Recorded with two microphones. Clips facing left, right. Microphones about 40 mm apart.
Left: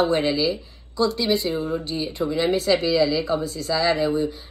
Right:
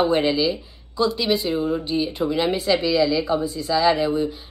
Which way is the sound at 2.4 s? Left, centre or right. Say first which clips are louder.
Left 1 dB; right.